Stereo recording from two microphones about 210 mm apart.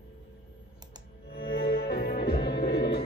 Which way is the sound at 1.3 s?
45° left (ahead or behind).